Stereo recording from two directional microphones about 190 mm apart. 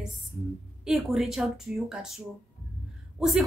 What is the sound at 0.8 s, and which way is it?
A woman's voice, centre (ahead or behind).